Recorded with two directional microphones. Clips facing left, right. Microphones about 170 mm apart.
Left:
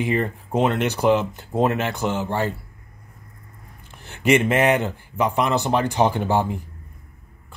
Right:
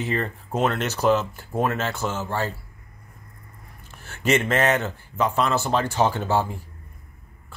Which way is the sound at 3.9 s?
15° left (ahead or behind).